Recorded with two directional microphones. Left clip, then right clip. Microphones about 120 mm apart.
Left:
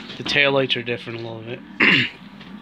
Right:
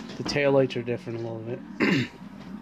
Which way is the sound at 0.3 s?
20° right (ahead or behind).